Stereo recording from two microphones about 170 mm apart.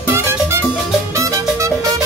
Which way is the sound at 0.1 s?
15° right (ahead or behind).